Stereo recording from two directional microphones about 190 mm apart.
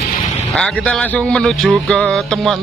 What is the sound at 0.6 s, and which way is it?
Speech, 5° left (ahead or behind).